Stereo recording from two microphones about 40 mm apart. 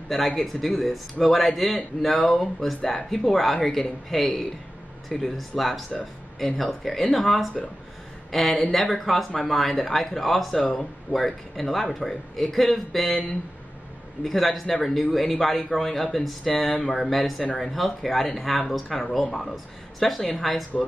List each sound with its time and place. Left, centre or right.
0.4 s a man's voice: centre
10.6 s speech: left
11.1 s a man's voice: centre
14.2 s a man's voice: centre